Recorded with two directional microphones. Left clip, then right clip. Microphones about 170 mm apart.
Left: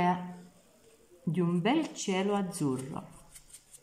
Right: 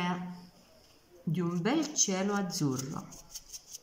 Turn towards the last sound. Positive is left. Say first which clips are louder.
# even
turn(degrees=10)  # may be behind; listen again after turning